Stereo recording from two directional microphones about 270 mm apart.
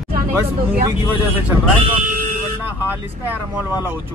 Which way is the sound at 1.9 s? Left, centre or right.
Right.